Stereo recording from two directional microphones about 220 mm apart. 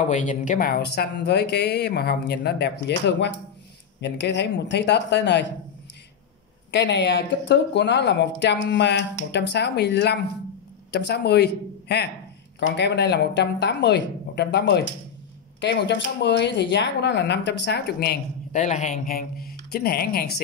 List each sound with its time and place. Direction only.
0.0 s speech: 35° left (ahead or behind); by 5.5 s 50° left (ahead or behind)
6.7 s speech: 55° left (ahead or behind)
18.5 s speech: 35° left (ahead or behind)